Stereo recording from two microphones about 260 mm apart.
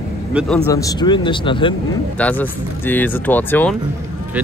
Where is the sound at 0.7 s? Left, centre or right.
Centre.